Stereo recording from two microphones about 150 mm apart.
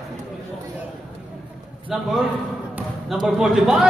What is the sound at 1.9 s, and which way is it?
Speech, centre (ahead or behind).